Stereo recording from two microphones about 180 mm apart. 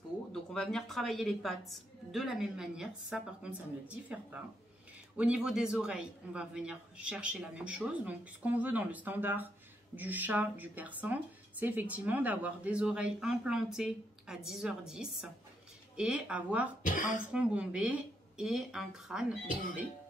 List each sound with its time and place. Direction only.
0.3 s a woman's voice: centre (ahead or behind)
16.8 s speech: 50° left (ahead or behind)
17.3 s a man's voice: 5° right (ahead or behind)